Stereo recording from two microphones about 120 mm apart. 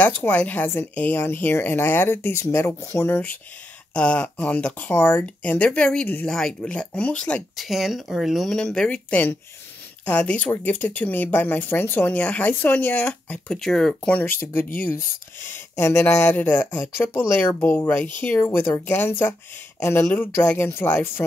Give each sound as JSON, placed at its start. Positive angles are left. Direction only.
{"t": 0.0, "sound": "speech", "side_deg": 15}
{"t": 7.5, "sound": "speech", "side_deg": 0}